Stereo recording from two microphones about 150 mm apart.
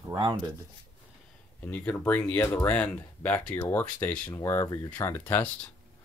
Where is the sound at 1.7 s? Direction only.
10° left (ahead or behind).